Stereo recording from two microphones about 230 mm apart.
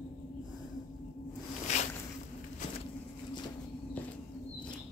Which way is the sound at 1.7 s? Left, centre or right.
Left.